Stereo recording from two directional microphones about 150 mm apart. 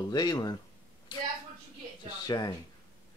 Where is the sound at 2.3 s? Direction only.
30° left (ahead or behind).